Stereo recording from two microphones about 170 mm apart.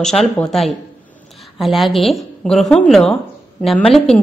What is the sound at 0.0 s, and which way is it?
A woman's voice, centre (ahead or behind).